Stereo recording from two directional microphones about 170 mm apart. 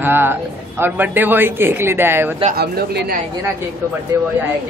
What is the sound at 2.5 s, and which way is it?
Speech, 65° right (ahead or behind).